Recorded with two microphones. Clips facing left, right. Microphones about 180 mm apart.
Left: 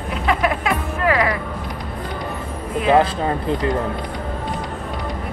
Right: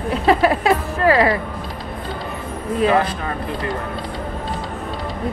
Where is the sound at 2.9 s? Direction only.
25° left (ahead or behind).